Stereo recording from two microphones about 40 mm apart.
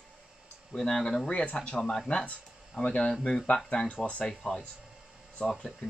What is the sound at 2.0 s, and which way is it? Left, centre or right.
Speech, left.